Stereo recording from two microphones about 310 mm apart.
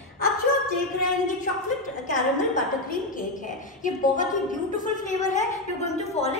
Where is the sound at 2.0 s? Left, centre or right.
Left.